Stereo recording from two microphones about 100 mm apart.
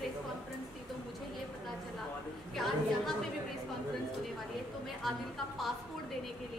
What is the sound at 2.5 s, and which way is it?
Speech, 5° left (ahead or behind).